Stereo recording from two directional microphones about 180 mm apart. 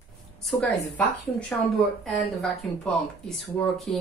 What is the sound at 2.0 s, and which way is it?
Speech, centre (ahead or behind).